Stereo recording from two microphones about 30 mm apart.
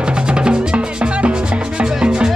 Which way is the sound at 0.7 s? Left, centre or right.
Right.